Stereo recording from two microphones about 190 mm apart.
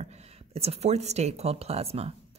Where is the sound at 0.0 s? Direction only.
35° right (ahead or behind).